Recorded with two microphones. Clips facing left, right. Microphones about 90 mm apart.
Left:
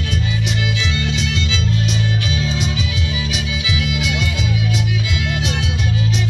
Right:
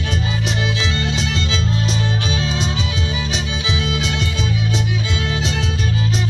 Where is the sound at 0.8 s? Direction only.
35° right (ahead or behind).